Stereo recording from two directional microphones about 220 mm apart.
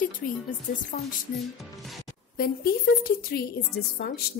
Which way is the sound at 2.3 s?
45° left (ahead or behind).